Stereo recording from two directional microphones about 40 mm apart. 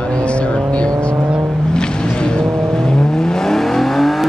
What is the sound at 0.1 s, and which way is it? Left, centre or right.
Vehicle, left.